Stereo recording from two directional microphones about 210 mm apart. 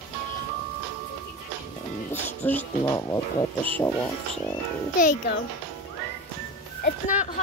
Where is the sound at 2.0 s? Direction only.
10° left (ahead or behind).